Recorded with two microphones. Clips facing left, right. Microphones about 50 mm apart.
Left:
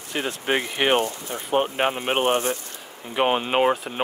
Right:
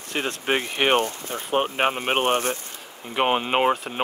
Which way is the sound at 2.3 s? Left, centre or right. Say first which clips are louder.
Even; right.